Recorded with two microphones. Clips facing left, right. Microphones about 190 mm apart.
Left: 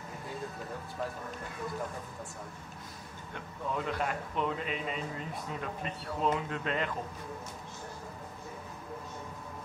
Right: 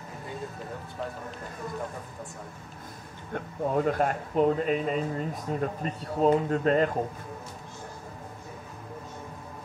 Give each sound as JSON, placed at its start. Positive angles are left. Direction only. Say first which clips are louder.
{"t": 3.3, "sound": "a man's voice", "louder": "right 9 dB", "side_deg": -45}